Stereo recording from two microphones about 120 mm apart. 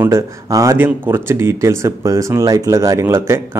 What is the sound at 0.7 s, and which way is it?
Speech, 15° right (ahead or behind).